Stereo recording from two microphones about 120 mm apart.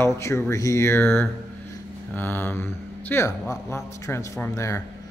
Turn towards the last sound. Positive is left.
turn(degrees=25)  # may be behind; listen again after turning